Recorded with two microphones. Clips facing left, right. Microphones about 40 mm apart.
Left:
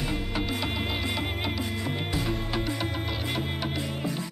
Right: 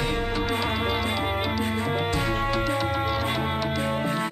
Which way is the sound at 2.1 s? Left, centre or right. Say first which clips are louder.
Right 5 dB; right.